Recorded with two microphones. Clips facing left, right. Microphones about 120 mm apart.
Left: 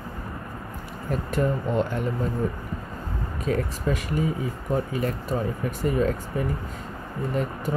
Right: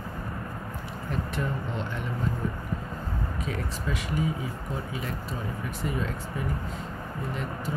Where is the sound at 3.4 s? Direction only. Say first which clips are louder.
Left 11 dB; 45° left (ahead or behind).